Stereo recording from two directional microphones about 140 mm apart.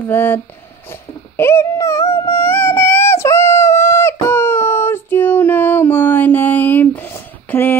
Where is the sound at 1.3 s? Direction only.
20° left (ahead or behind).